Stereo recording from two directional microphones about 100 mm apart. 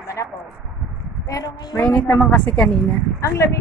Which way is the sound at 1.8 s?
10° left (ahead or behind).